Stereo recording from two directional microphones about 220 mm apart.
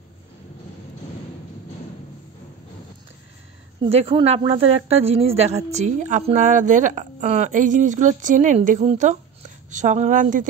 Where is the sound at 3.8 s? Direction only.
25° right (ahead or behind).